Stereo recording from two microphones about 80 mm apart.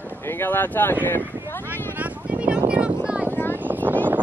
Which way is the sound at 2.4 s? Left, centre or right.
Centre.